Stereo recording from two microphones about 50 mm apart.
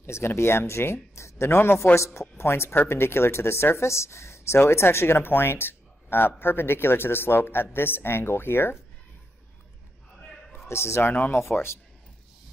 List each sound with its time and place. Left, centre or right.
0.0 s speech: left
4.6 s speech: left
10.7 s speech: left